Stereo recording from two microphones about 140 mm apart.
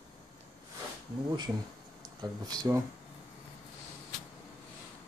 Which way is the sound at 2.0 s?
30° right (ahead or behind).